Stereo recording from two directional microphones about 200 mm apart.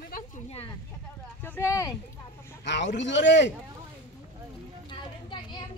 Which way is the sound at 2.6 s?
60° left (ahead or behind).